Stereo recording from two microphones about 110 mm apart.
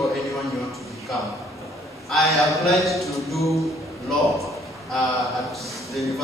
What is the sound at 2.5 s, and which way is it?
A man's voice, centre (ahead or behind).